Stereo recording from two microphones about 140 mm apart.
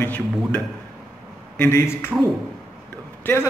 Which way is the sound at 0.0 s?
10° left (ahead or behind).